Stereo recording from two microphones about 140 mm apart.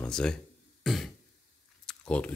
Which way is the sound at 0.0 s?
5° left (ahead or behind).